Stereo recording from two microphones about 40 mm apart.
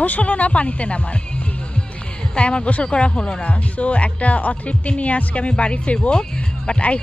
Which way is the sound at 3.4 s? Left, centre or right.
Left.